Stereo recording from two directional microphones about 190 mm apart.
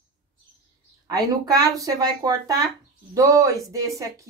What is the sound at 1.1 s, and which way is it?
Speech, 20° right (ahead or behind).